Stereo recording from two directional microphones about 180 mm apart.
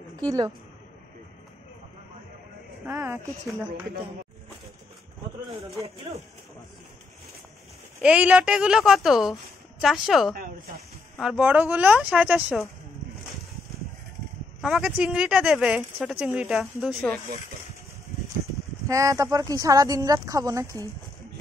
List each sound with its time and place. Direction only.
0.1 s speech: 20° right (ahead or behind)
2.9 s speech: 15° right (ahead or behind)
8.0 s a woman's voice: 5° right (ahead or behind)
10.3 s speech: 50° right (ahead or behind)
11.1 s speech: 5° right (ahead or behind)
14.6 s a woman's voice: 5° right (ahead or behind)
18.9 s speech: 20° right (ahead or behind)